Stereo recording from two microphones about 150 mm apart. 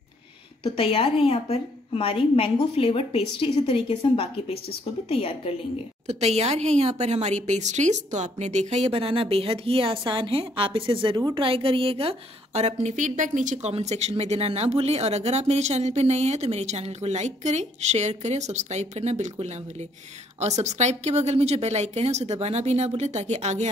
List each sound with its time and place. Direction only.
0.7 s a woman's voice: 40° left (ahead or behind)
6.0 s a woman's voice: 45° right (ahead or behind)